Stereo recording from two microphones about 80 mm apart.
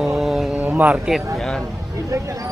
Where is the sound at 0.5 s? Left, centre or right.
Right.